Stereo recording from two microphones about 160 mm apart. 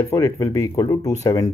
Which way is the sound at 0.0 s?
20° left (ahead or behind).